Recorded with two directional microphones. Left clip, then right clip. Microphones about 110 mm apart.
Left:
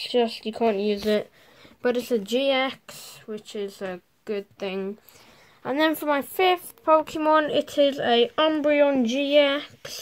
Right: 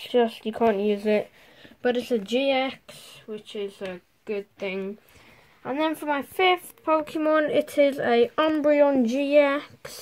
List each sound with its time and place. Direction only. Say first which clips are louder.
0.0 s speech: right 1 dB; centre (ahead or behind)
1.8 s speech: left 1 dB; 35° left (ahead or behind)
5.8 s speech: left 3 dB; 50° left (ahead or behind)
6.3 s speech: even; 20° left (ahead or behind); by 9.9 s 5° right (ahead or behind)